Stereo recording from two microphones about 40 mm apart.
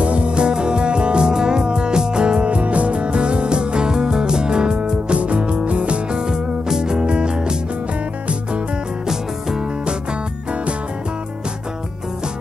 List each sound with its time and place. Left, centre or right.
0.0 s music: right
6.1 s music: centre
9.0 s music: centre